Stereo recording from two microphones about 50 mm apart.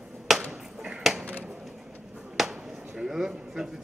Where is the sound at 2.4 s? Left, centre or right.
Centre.